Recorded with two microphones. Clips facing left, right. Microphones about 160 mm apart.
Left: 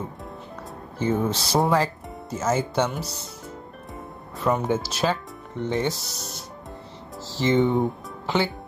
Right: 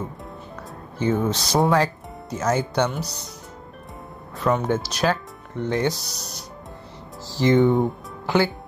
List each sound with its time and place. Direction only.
0.9 s speech: centre (ahead or behind)
4.4 s speech: 5° left (ahead or behind)
7.6 s speech: centre (ahead or behind)